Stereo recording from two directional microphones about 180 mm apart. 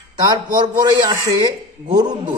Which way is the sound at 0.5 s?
25° right (ahead or behind).